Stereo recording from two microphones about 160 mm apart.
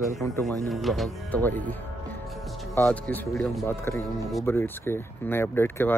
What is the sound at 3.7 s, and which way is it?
Speech, 15° left (ahead or behind).